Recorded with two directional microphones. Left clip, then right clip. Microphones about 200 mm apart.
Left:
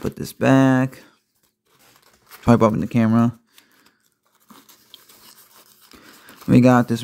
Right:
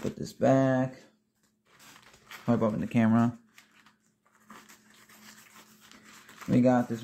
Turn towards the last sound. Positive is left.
turn(degrees=50)  # may be behind; listen again after turning